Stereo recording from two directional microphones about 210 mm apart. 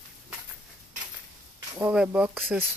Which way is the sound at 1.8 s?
10° right (ahead or behind).